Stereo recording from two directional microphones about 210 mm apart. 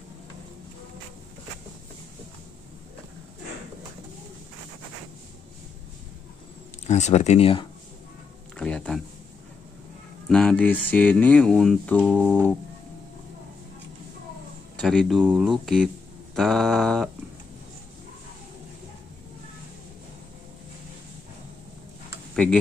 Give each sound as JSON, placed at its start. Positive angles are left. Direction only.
{"t": 6.9, "sound": "speech", "side_deg": 35}
{"t": 8.5, "sound": "speech", "side_deg": 5}
{"t": 10.2, "sound": "speech", "side_deg": 5}
{"t": 14.8, "sound": "speech", "side_deg": 5}
{"t": 16.3, "sound": "mantra", "side_deg": 0}
{"t": 22.3, "sound": "tick-tock", "side_deg": 5}